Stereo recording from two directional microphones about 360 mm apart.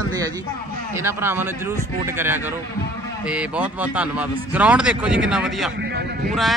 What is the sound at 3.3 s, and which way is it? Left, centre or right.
Speech, centre.